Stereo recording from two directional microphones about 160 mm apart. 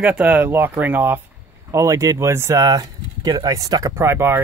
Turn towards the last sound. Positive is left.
turn(degrees=-15)  # may be behind; listen again after turning